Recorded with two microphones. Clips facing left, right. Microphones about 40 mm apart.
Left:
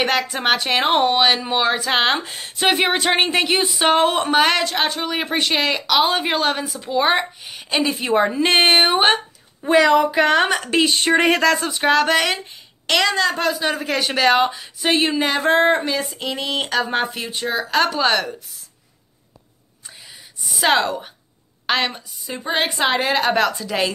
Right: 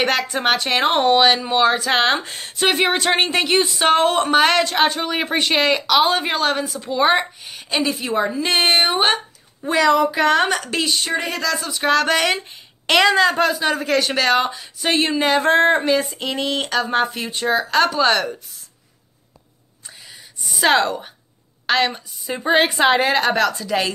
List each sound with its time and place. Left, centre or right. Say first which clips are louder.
0.0 s speech: right 1 dB; centre
8.0 s a woman's voice: left 3 dB; left
8.7 s speech: left 2 dB; centre
11.1 s speech: left 7 dB; left
11.5 s a woman's voice: left 3 dB; left
11.8 s speech: even; centre
12.8 s speech: right 3 dB; centre
20.4 s a woman's voice: right 1 dB; centre
22.3 s a woman's voice: right 5 dB; centre
23.3 s speech: right 1 dB; centre